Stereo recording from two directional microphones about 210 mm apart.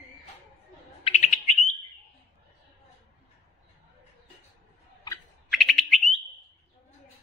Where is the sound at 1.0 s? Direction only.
30° left (ahead or behind).